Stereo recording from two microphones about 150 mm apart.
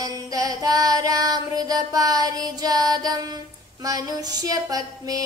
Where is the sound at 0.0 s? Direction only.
25° right (ahead or behind).